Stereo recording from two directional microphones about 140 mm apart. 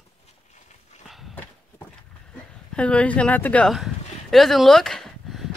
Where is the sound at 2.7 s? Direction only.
10° left (ahead or behind).